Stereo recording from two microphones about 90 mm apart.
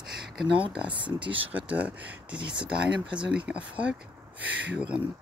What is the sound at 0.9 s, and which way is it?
Speech, 65° right (ahead or behind).